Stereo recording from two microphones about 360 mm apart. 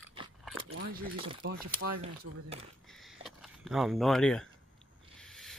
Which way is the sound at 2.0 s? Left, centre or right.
Centre.